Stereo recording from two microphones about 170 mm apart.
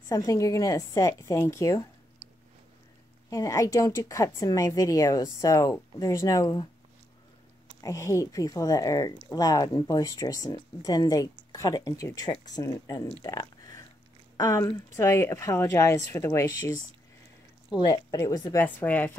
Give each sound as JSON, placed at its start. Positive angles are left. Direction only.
{"t": 0.1, "sound": "a woman's voice", "side_deg": 20}
{"t": 3.3, "sound": "a woman's voice", "side_deg": 20}
{"t": 7.8, "sound": "a woman's voice", "side_deg": 20}
{"t": 13.2, "sound": "a sound", "side_deg": 20}
{"t": 14.3, "sound": "a woman's voice", "side_deg": 20}